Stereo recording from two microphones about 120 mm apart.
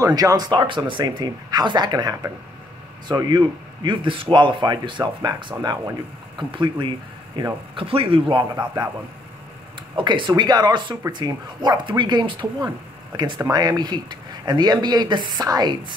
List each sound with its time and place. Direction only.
0.0 s speech: 30° right (ahead or behind); by 8.5 s 45° right (ahead or behind)
9.9 s speech: 40° right (ahead or behind)